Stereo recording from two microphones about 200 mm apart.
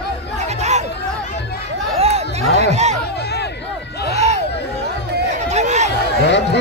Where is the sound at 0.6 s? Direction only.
35° right (ahead or behind).